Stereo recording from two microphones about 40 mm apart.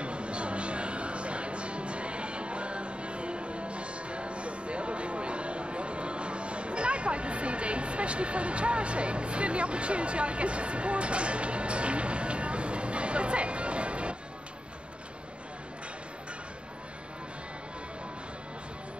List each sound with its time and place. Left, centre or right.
0.0 s music: right